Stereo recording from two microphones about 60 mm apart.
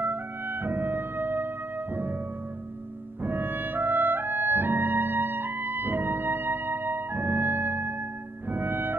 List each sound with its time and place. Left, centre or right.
0.0 s music: right
3.2 s clarinet: right
8.5 s music: right